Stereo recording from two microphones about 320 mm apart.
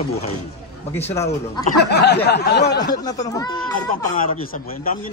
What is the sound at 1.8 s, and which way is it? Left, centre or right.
Speech, left.